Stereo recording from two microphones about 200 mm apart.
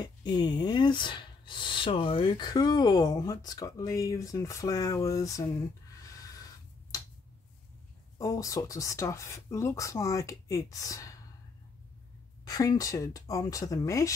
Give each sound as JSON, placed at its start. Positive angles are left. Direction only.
{"t": 0.0, "sound": "speech", "side_deg": 20}
{"t": 6.9, "sound": "tick-tock", "side_deg": 15}
{"t": 8.2, "sound": "speech", "side_deg": 15}
{"t": 12.4, "sound": "speech", "side_deg": 15}